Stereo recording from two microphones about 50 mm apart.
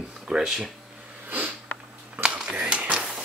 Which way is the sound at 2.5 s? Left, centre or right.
Right.